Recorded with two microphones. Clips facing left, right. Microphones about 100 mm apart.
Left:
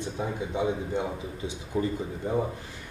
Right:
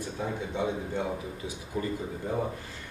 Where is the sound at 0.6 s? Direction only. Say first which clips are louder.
Left 3 dB; 15° left (ahead or behind).